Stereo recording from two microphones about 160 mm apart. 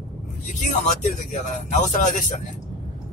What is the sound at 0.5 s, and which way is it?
Speech, 50° left (ahead or behind).